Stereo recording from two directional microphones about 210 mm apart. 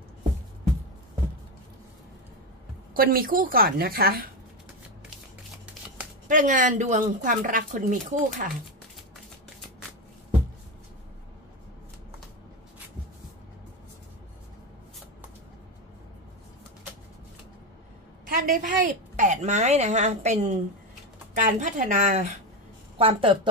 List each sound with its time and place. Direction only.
2.9 s a woman's voice: 45° right (ahead or behind)
6.2 s speech: 40° right (ahead or behind)
18.3 s a woman's voice: 40° right (ahead or behind)